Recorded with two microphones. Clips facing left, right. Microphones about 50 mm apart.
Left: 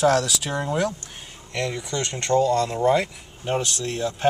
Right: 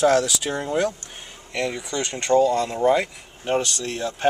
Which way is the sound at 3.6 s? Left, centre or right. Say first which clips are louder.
Left 1 dB; centre.